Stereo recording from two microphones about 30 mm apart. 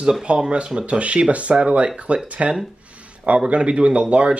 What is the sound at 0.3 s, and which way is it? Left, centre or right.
Speech, right.